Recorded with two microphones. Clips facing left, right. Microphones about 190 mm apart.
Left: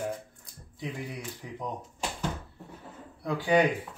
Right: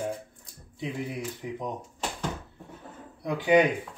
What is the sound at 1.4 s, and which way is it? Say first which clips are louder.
Speech: right 6 dB; 15° right (ahead or behind).